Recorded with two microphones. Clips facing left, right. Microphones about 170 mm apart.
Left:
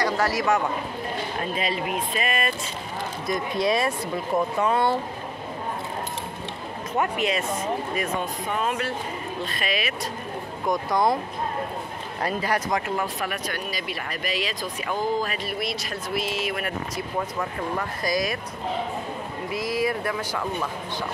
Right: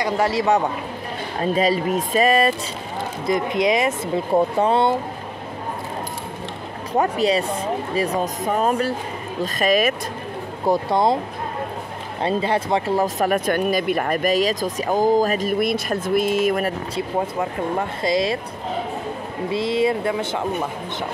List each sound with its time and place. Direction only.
0.0 s speech: 25° right (ahead or behind)
3.3 s speech: 20° right (ahead or behind)
4.3 s speech: 30° right (ahead or behind)
6.9 s speech: 35° right (ahead or behind)
10.6 s speech: 30° right (ahead or behind)
12.2 s speech: 25° right (ahead or behind); by 16.7 s 45° right (ahead or behind)
16.9 s speech: 25° right (ahead or behind)
19.5 s speech: 25° right (ahead or behind)